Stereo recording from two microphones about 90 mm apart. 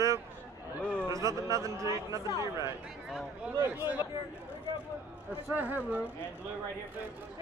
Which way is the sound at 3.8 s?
25° right (ahead or behind).